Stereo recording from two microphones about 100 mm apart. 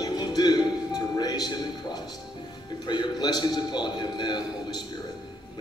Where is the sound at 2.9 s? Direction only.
45° left (ahead or behind).